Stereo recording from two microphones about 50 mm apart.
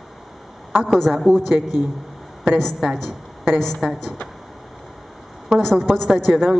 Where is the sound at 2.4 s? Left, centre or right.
Centre.